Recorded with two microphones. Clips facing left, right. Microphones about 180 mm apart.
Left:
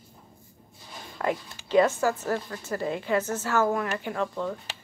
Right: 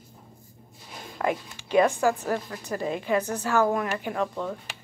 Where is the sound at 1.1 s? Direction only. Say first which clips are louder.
Right 1 dB; 15° right (ahead or behind).